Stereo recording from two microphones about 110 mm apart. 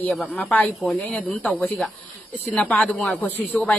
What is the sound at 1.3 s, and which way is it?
Speech, 15° left (ahead or behind).